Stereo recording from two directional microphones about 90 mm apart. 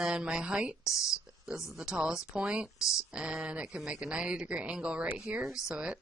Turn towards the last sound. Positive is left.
turn(degrees=-10)  # may be behind; listen again after turning